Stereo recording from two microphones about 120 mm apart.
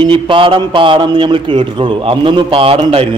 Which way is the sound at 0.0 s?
45° right (ahead or behind).